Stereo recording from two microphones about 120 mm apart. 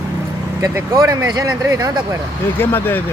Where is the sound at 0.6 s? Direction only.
25° right (ahead or behind).